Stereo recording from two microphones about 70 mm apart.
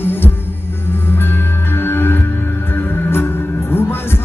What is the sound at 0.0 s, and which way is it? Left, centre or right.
Music, left.